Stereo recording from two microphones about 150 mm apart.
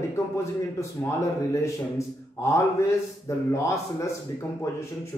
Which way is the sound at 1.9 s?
20° left (ahead or behind).